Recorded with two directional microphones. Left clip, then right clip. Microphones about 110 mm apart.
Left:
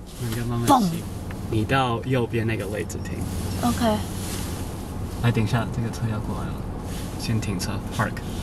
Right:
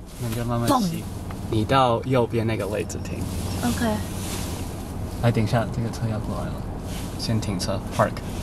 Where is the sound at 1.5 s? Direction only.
15° right (ahead or behind).